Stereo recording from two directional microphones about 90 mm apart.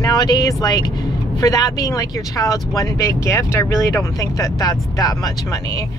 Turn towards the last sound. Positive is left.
turn(degrees=35)  # may be behind; listen again after turning